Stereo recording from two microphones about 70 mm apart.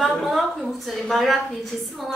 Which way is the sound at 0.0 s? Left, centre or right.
Centre.